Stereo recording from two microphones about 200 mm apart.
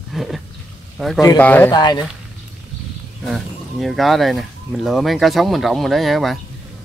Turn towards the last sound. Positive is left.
turn(degrees=0)  # may be behind; listen again after turning